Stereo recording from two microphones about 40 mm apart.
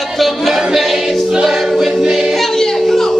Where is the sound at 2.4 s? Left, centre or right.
Centre.